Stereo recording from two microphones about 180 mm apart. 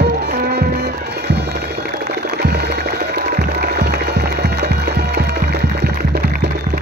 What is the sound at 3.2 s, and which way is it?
Music, 65° right (ahead or behind).